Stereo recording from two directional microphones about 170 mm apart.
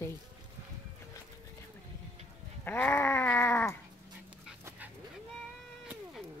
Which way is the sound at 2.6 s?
10° left (ahead or behind).